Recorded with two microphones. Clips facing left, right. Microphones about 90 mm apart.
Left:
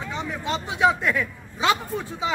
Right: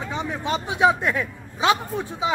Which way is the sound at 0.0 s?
15° right (ahead or behind).